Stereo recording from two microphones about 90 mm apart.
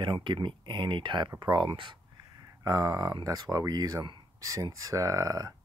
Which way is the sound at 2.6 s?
40° right (ahead or behind).